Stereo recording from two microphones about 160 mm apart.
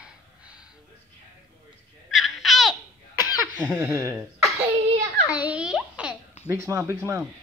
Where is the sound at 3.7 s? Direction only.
15° right (ahead or behind).